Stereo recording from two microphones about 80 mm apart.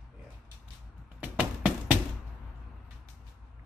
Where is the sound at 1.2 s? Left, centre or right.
Centre.